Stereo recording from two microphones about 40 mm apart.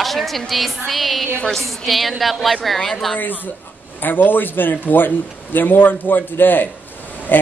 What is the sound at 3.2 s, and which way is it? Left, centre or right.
A man's voice, left.